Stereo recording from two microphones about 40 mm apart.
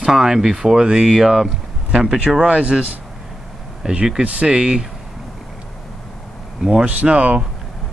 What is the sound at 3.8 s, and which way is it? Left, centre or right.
Speech, centre.